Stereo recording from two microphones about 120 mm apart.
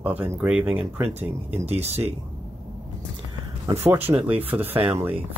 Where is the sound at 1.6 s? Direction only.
60° right (ahead or behind).